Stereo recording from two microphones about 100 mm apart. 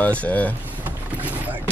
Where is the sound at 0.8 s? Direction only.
15° right (ahead or behind).